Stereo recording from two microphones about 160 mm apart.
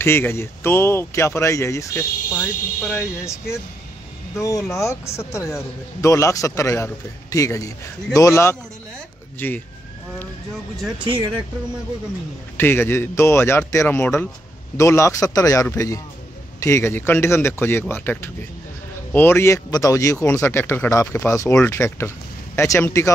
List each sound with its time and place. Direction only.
0.0 s speech: 15° left (ahead or behind)
2.3 s speech: 5° right (ahead or behind)
3.3 s a man's voice: 15° left (ahead or behind)
12.5 s a man's voice: 15° left (ahead or behind)